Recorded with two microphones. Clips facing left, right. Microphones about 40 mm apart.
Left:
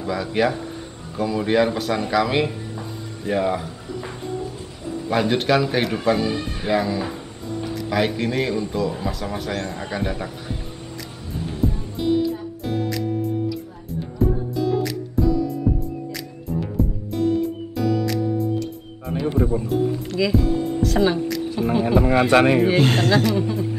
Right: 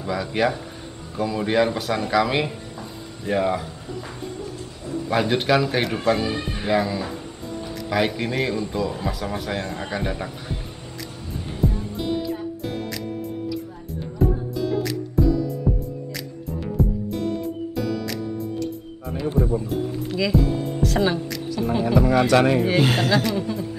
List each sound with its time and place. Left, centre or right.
0.0 s speech: centre
4.8 s speech: centre
11.6 s music: centre
19.6 s music: centre
21.8 s speech: left
22.8 s speech: centre